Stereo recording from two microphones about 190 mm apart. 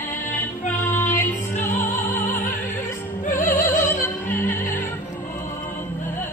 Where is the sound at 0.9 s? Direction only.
10° left (ahead or behind).